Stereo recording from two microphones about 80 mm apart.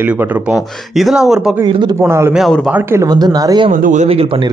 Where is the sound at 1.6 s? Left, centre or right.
Right.